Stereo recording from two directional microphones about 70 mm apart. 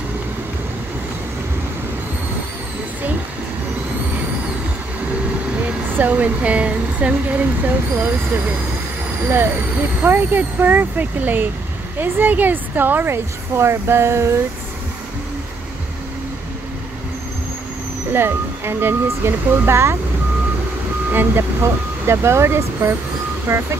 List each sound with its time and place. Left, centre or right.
5.9 s speech: right
10.0 s speech: right
18.1 s speech: right
21.1 s speech: right